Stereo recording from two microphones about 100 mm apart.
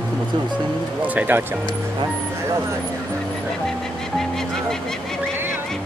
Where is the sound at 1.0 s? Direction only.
15° right (ahead or behind).